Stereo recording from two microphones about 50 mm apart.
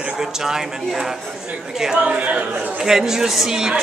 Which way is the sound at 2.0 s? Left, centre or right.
Right.